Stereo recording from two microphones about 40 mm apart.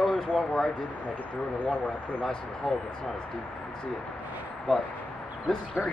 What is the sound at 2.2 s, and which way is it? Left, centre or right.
Speech, centre.